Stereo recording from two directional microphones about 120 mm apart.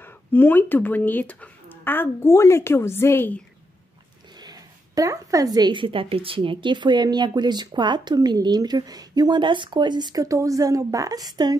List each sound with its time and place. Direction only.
0.0 s speech: 15° left (ahead or behind)
4.4 s a woman's voice: 35° right (ahead or behind)